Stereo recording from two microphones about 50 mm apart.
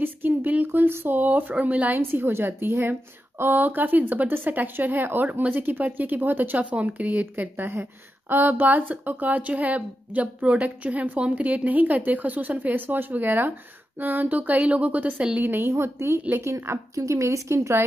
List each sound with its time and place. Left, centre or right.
0.0 s a sound: right
0.7 s speech: right
2.0 s a woman's voice: right
6.7 s speech: right
15.4 s a woman's voice: right
15.7 s a woman's voice: right
16.4 s speech: right